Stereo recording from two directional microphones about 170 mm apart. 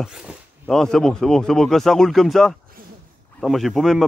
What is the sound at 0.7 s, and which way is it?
Speech, 5° left (ahead or behind).